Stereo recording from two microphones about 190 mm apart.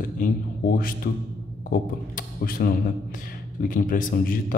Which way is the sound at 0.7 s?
45° left (ahead or behind).